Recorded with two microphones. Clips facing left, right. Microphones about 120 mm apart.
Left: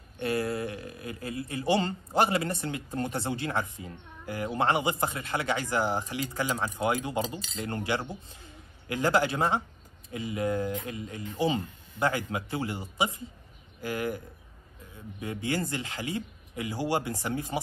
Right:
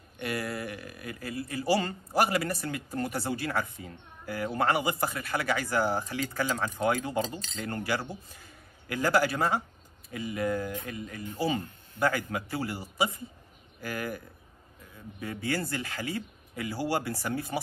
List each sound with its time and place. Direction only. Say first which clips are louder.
0.2 s speech: left 4 dB; 25° left (ahead or behind); by 7.5 s 5° left (ahead or behind)
7.5 s a man's voice: left 1 dB; 20° left (ahead or behind)